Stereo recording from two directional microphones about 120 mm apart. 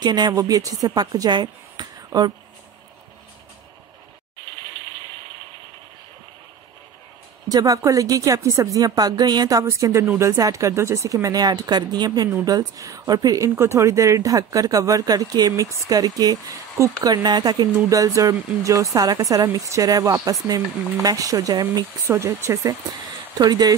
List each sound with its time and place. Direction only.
0.0 s a woman's voice: 35° right (ahead or behind)
7.4 s speech: 30° right (ahead or behind)
22.0 s speech: 20° right (ahead or behind)